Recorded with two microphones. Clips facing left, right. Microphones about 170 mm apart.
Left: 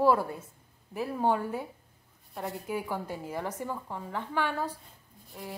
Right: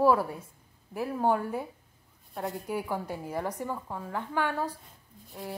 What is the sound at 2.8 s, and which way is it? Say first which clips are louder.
A woman's voice: right 1 dB; 10° right (ahead or behind).